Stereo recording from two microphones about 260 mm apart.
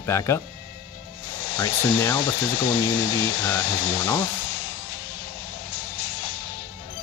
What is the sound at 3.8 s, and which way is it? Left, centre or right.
Speech, centre.